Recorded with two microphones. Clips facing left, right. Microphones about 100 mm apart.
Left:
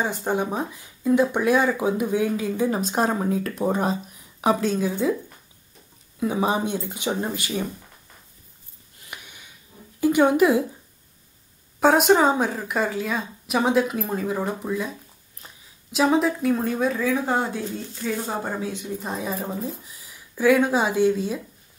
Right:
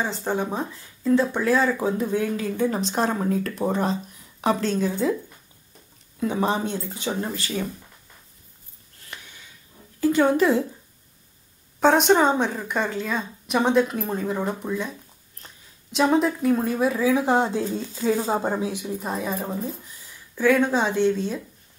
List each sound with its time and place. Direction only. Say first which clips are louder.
0.0 s speech: left 1 dB; 10° left (ahead or behind)
6.1 s speech: left 1 dB; 10° left (ahead or behind)
9.1 s a sound: left 1 dB; 15° left (ahead or behind)
9.9 s a woman's voice: left 1 dB; 15° left (ahead or behind)
11.8 s a woman's voice: even; 5° left (ahead or behind)
17.2 s speech: right 3 dB; 20° right (ahead or behind)
19.0 s a woman's voice: right 1 dB; centre (ahead or behind)